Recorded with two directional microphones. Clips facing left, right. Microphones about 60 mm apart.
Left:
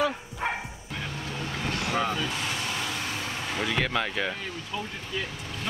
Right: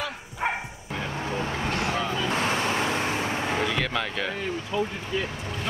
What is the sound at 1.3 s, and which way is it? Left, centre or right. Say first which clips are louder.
Vehicle: right 4 dB; right.